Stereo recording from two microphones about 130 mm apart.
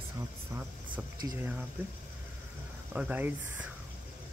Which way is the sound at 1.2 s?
25° right (ahead or behind).